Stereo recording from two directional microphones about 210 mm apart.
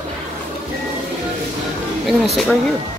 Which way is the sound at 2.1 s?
Centre (ahead or behind).